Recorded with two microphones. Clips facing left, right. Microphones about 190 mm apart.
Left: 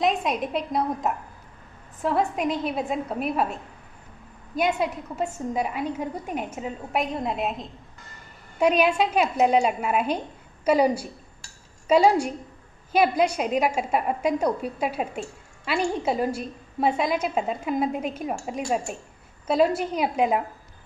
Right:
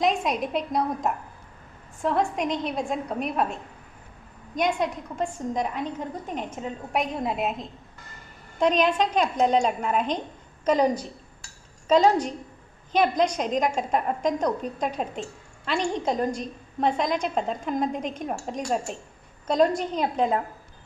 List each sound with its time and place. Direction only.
0.0 s a woman's voice: centre (ahead or behind)
4.6 s a woman's voice: 5° left (ahead or behind)